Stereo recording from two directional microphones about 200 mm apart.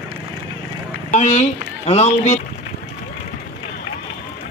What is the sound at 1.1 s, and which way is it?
Boat, 35° left (ahead or behind).